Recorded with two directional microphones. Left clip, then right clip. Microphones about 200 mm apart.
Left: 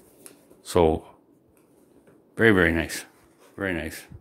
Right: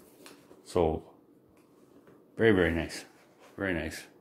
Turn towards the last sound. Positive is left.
turn(degrees=30)  # may be behind; listen again after turning